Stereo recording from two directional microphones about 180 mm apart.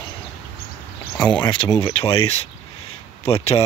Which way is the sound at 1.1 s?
10° left (ahead or behind).